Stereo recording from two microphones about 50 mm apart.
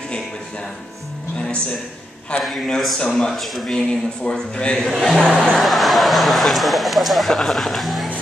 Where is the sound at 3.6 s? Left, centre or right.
Centre.